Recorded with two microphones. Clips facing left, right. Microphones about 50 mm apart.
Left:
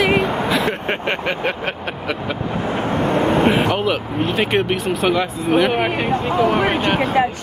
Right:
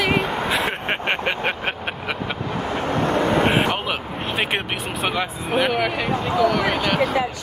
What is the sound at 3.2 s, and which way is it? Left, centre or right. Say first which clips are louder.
Vehicle: left 3 dB; right.